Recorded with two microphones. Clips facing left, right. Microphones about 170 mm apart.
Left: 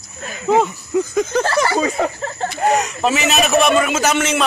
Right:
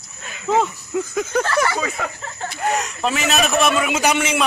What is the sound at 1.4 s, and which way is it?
Speech, 35° left (ahead or behind).